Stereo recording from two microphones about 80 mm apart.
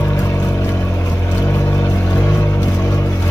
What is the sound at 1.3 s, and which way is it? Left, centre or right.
Music, left.